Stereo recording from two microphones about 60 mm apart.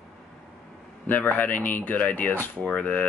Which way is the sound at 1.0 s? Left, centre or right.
Left.